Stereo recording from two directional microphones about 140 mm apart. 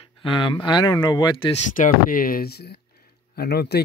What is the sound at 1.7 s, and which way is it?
Speech, 75° left (ahead or behind).